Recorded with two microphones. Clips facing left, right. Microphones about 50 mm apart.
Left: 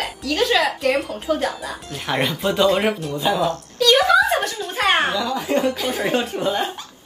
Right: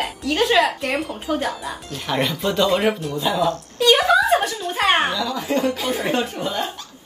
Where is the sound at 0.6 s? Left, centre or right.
Centre.